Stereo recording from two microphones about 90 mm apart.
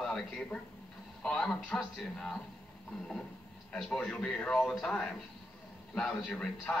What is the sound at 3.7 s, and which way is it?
Speech, 5° left (ahead or behind).